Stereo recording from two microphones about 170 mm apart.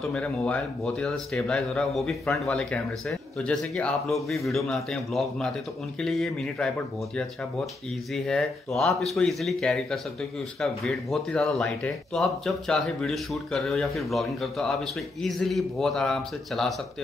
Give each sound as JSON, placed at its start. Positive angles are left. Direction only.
{"t": 0.1, "sound": "speech", "side_deg": 5}
{"t": 8.1, "sound": "speech", "side_deg": 0}